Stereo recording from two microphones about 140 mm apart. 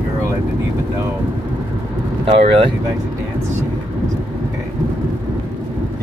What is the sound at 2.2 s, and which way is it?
Speech, 45° right (ahead or behind).